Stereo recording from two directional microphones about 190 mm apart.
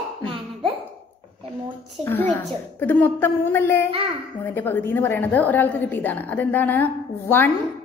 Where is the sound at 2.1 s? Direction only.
10° left (ahead or behind).